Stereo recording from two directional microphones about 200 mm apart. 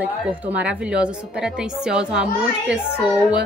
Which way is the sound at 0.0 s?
10° right (ahead or behind).